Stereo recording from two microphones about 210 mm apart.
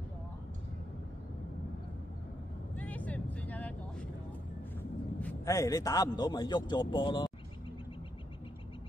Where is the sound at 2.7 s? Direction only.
5° left (ahead or behind).